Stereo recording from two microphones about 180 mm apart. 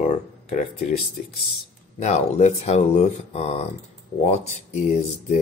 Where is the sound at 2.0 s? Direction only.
40° left (ahead or behind).